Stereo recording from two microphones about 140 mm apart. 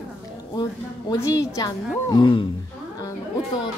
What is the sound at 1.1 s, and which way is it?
A woman's voice, 25° left (ahead or behind).